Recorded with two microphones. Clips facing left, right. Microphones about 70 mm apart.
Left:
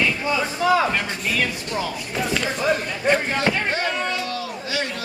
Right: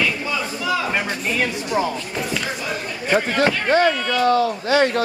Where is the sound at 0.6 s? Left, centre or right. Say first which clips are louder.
Left 6 dB; left.